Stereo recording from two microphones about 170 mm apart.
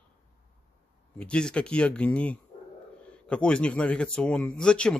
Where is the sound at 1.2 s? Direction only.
5° left (ahead or behind).